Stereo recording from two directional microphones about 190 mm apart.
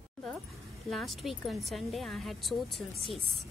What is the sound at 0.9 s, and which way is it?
A woman's voice, centre (ahead or behind).